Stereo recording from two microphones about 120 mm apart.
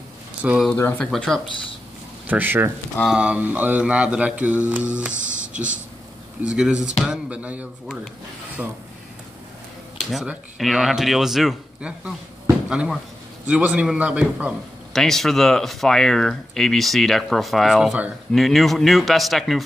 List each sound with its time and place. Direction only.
0.4 s speech: 10° right (ahead or behind)
0.9 s speech: 5° left (ahead or behind)
2.2 s mantra: 15° right (ahead or behind)
10.6 s speech: centre (ahead or behind)
13.5 s mantra: 10° right (ahead or behind)
14.9 s speech: 5° left (ahead or behind)